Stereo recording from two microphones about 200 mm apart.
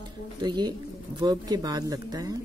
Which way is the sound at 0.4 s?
20° right (ahead or behind).